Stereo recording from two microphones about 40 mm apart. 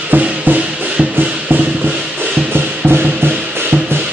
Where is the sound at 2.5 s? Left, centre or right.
Right.